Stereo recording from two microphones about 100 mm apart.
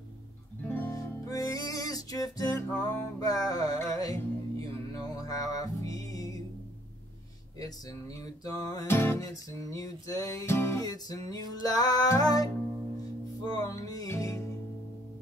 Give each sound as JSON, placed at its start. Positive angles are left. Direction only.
{"t": 0.6, "sound": "music", "side_deg": 20}
{"t": 0.9, "sound": "music", "side_deg": 35}
{"t": 7.5, "sound": "music", "side_deg": 35}
{"t": 8.8, "sound": "music", "side_deg": 25}
{"t": 9.2, "sound": "music", "side_deg": 35}
{"t": 10.8, "sound": "music", "side_deg": 40}